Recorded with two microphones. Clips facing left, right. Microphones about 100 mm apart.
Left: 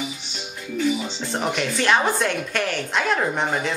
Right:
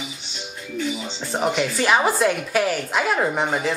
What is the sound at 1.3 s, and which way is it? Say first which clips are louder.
Speech: right 3 dB; 5° right (ahead or behind).